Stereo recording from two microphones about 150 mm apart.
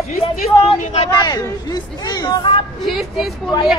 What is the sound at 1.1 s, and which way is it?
Speech, 25° left (ahead or behind).